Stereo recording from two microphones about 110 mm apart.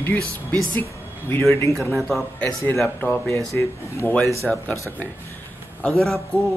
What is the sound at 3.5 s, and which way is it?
Speech, 25° left (ahead or behind).